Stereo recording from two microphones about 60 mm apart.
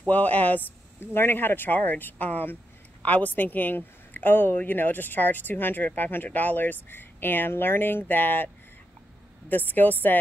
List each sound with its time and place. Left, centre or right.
0.0 s speech: left
9.5 s speech: left